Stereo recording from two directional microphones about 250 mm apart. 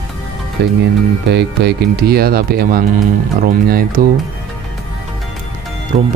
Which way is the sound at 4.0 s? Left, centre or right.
Right.